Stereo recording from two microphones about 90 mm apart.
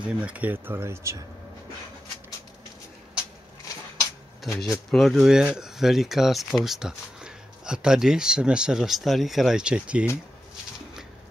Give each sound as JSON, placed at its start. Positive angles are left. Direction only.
{"t": 0.0, "sound": "speech", "side_deg": -15}
{"t": 4.6, "sound": "speech", "side_deg": 0}